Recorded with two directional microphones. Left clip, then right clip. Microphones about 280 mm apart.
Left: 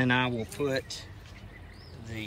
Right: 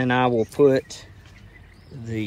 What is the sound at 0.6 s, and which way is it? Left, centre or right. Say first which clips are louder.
Speech: right 15 dB; centre.